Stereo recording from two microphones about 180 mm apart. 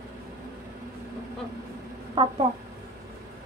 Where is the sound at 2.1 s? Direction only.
30° right (ahead or behind).